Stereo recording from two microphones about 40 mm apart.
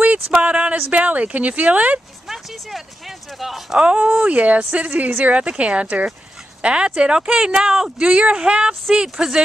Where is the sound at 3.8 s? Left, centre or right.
Right.